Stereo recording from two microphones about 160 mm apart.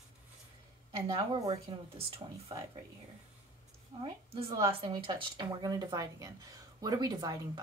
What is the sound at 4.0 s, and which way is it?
Speech, 35° right (ahead or behind).